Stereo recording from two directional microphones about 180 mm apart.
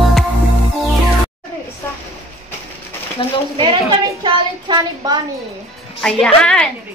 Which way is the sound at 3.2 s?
30° left (ahead or behind).